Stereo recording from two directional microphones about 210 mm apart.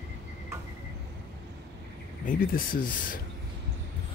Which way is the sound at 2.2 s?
40° left (ahead or behind).